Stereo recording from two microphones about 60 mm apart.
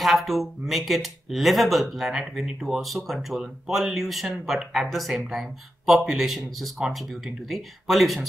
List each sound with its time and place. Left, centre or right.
0.0 s a man's voice: centre